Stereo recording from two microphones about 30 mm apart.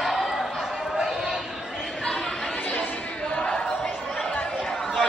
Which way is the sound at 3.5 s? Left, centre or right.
Left.